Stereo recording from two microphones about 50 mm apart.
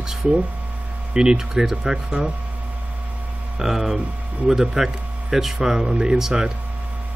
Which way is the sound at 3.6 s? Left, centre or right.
Centre.